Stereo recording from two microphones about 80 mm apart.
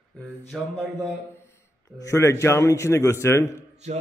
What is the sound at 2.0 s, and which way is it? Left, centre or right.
A man's voice, left.